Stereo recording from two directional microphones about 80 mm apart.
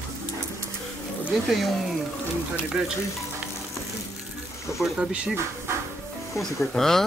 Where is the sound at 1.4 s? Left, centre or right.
Centre.